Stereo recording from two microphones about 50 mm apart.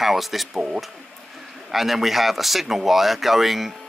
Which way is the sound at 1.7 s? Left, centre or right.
Centre.